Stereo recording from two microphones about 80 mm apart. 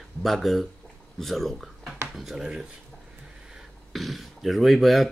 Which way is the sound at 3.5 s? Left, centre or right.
Centre.